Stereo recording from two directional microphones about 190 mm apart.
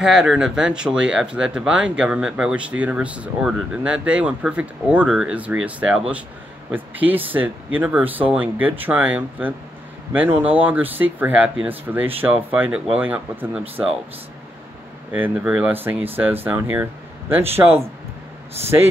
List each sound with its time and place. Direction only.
0.0 s speech: centre (ahead or behind)
15.1 s speech: 10° right (ahead or behind)